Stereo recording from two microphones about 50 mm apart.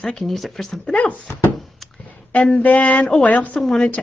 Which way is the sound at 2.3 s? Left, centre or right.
Left.